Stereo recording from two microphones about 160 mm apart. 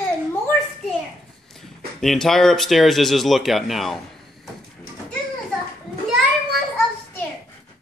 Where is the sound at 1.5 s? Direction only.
Centre (ahead or behind).